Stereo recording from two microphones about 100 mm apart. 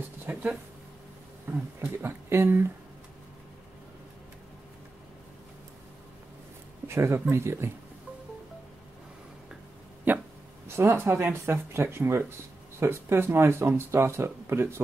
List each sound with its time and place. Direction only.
0.3 s speech: 20° right (ahead or behind)
1.8 s speech: 25° right (ahead or behind)
6.9 s speech: 25° right (ahead or behind)
10.1 s hiccup: 20° right (ahead or behind)
10.8 s speech: 25° right (ahead or behind)